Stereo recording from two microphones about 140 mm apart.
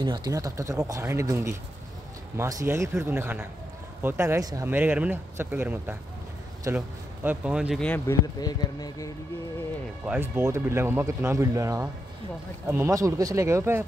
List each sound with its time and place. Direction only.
0.0 s speech: 30° right (ahead or behind)
4.6 s speech: 15° right (ahead or behind)
7.2 s speech: 10° right (ahead or behind)
8.1 s speech: 30° left (ahead or behind)
10.0 s speech: 15° right (ahead or behind)